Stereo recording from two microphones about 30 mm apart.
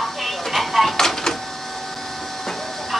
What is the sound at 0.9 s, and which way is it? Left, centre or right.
Printer, centre.